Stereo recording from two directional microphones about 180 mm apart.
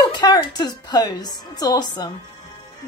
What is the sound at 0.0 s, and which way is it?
A woman's voice, 25° left (ahead or behind).